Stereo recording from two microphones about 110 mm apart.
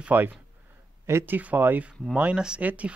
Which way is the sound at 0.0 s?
15° right (ahead or behind).